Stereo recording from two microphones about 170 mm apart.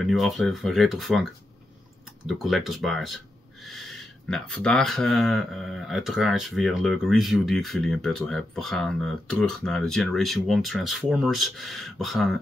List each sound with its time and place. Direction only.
0.0 s speech: centre (ahead or behind)